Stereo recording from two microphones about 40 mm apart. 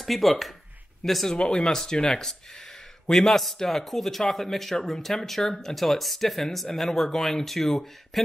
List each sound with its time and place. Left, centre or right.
0.0 s speech: centre
1.3 s speech: centre